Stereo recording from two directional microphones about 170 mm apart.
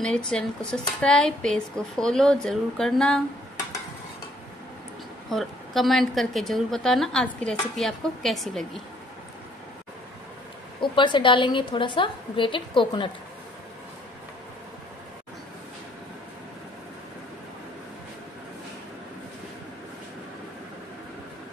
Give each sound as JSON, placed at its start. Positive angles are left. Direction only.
{"t": 0.0, "sound": "a woman's voice", "side_deg": 5}
{"t": 5.3, "sound": "a woman's voice", "side_deg": 0}
{"t": 10.8, "sound": "a woman's voice", "side_deg": 30}